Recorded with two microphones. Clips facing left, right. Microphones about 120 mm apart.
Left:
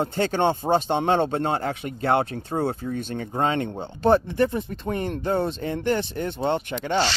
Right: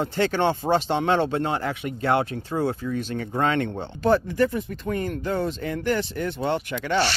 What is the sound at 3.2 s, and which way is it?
Speech, 30° left (ahead or behind).